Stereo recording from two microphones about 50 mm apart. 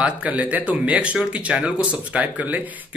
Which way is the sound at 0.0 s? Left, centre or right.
Right.